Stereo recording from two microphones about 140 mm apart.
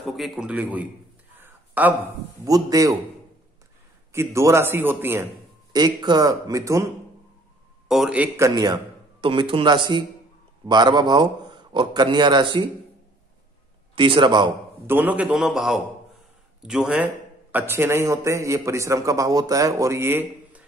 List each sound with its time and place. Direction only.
0.0 s a man's voice: centre (ahead or behind)
1.4 s a sound: 10° right (ahead or behind)
2.4 s speech: 25° right (ahead or behind)
4.1 s speech: 20° right (ahead or behind)
5.7 s speech: 30° right (ahead or behind)
7.9 s a man's voice: 5° right (ahead or behind)
8.4 s speech: 25° right (ahead or behind)
9.2 s speech: 40° right (ahead or behind)
13.9 s speech: 35° right (ahead or behind)
14.9 s a man's voice: 10° right (ahead or behind)